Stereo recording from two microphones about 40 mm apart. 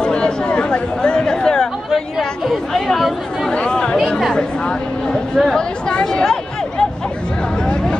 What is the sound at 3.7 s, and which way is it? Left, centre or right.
Speech, centre.